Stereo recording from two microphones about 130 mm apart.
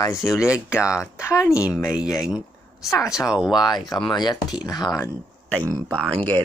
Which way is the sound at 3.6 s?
30° left (ahead or behind).